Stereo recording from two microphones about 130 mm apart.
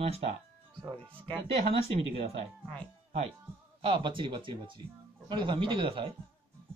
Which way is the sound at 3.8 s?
40° right (ahead or behind).